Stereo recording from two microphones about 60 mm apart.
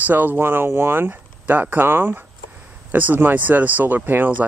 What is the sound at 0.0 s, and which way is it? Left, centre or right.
Speech, right.